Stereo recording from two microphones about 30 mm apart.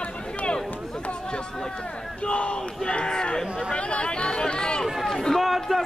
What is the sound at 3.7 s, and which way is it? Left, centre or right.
Chatter, left.